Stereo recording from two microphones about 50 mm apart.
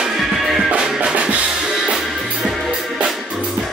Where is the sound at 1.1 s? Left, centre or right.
Right.